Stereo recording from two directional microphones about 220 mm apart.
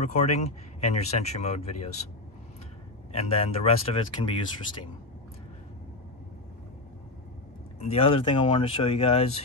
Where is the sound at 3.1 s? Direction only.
25° left (ahead or behind).